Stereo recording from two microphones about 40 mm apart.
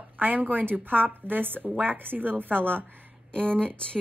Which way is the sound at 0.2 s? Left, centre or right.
Right.